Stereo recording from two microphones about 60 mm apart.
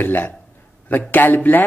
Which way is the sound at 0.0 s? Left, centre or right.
Left.